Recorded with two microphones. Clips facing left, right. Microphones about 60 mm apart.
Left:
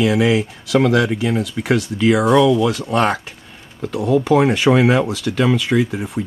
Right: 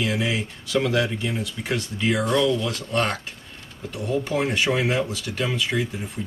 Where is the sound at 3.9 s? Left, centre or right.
Left.